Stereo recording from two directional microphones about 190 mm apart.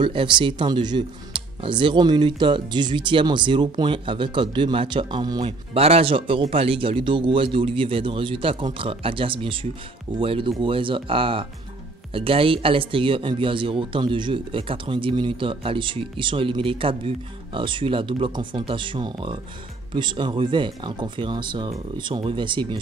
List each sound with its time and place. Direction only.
0.0 s speech: 25° right (ahead or behind)